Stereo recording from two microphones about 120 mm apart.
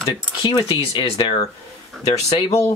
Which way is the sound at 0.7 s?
50° left (ahead or behind).